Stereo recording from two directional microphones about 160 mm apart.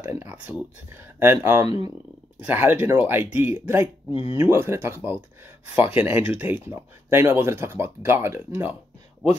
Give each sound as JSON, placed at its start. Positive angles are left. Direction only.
{"t": 0.0, "sound": "speech", "side_deg": -15}
{"t": 4.1, "sound": "speech", "side_deg": 35}
{"t": 4.4, "sound": "speech", "side_deg": -15}